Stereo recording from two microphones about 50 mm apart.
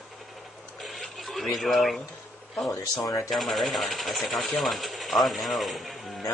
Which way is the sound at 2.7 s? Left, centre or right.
Left.